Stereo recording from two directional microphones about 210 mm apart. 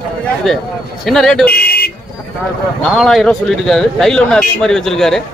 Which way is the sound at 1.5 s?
50° left (ahead or behind).